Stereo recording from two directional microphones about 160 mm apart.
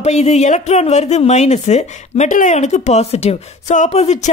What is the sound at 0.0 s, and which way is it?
A woman's voice, 45° left (ahead or behind).